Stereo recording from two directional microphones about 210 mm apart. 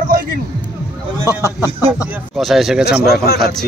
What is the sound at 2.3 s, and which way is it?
Speech, centre (ahead or behind).